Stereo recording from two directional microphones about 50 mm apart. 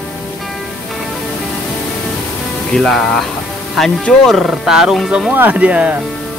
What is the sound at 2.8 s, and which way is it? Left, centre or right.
Speech, centre.